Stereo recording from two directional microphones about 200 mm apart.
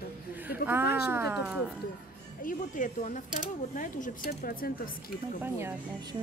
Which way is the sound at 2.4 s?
40° left (ahead or behind).